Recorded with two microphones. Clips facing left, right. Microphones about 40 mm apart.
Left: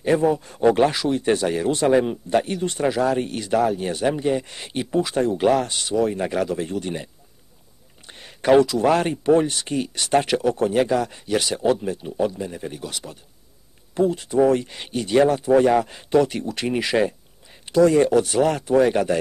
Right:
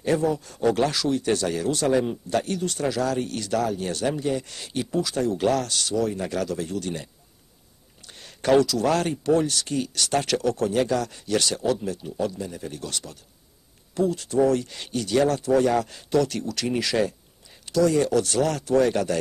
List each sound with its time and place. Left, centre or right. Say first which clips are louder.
0.0 s speech: left 4 dB; left
8.1 s speech: left 4 dB; left